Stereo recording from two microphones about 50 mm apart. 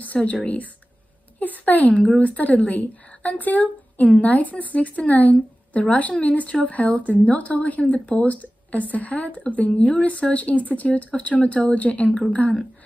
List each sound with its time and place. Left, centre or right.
0.2 s a woman's voice: left